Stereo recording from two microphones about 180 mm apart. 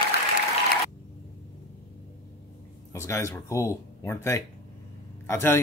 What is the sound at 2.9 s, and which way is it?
Speech, 15° left (ahead or behind).